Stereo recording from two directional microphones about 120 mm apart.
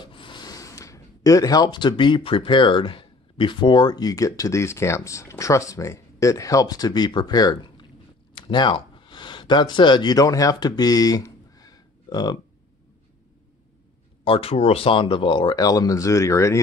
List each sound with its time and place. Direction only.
0.0 s speech: 40° left (ahead or behind)
14.2 s speech: 50° left (ahead or behind); by 16.5 s 25° left (ahead or behind)